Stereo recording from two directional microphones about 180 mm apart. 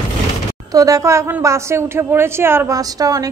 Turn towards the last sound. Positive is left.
turn(degrees=-20)  # may be behind; listen again after turning